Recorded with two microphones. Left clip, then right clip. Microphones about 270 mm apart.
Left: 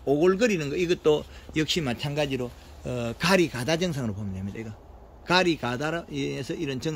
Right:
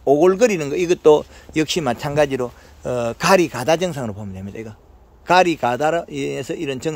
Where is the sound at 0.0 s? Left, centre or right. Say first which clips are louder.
Right 8 dB; centre.